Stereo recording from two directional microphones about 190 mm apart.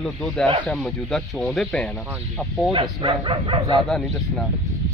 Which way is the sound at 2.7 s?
30° right (ahead or behind).